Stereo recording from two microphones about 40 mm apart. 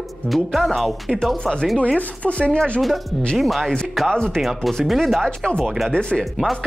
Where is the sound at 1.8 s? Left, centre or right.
Left.